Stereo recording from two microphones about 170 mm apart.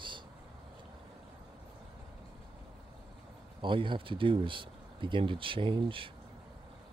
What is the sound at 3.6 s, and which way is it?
Speech, 30° right (ahead or behind).